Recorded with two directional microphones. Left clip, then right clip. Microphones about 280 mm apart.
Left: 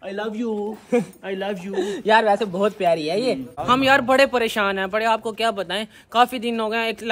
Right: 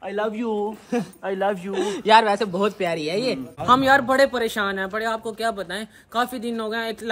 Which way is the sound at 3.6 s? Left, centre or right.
Centre.